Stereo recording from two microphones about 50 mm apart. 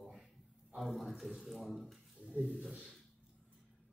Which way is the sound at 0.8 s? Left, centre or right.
Centre.